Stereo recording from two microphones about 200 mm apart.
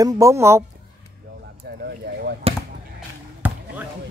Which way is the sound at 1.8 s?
50° right (ahead or behind).